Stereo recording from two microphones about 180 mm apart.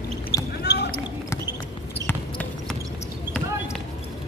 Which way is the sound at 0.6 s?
65° left (ahead or behind).